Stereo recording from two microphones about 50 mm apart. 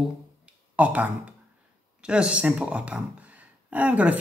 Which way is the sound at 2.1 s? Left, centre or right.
Right.